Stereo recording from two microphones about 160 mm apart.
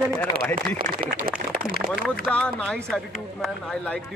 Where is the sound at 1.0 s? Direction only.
65° right (ahead or behind).